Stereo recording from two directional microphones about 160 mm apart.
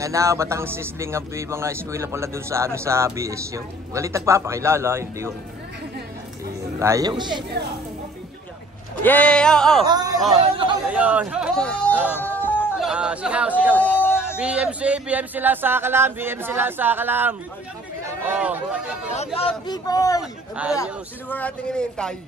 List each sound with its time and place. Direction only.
0.0 s a man's voice: 20° right (ahead or behind)
6.8 s speech: 20° right (ahead or behind)
9.0 s speech: 10° left (ahead or behind)
9.8 s speech: 25° right (ahead or behind)
10.9 s a man's voice: 10° right (ahead or behind)
11.5 s speech: 5° left (ahead or behind)
11.9 s music: 10° right (ahead or behind)
12.2 s yodeling: 10° left (ahead or behind)
12.7 s speech: 5° right (ahead or behind)
13.7 s a sound: 10° left (ahead or behind)
14.3 s a man's voice: 10° right (ahead or behind)
19.0 s a man's voice: 40° left (ahead or behind); by 21.4 s 20° left (ahead or behind)
21.4 s speech: 5° left (ahead or behind)